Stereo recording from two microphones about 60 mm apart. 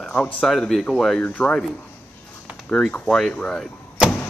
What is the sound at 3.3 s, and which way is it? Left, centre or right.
Speech, centre.